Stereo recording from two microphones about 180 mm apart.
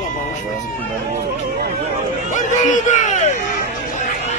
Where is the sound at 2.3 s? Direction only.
45° left (ahead or behind).